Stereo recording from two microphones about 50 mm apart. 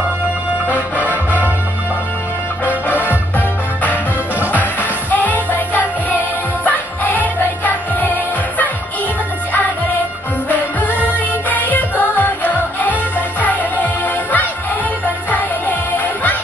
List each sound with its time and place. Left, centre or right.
0.7 s music: right
2.9 s music: left
5.1 s music: left
10.5 s music: left